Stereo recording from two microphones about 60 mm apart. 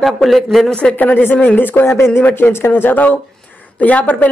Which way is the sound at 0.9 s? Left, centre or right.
Left.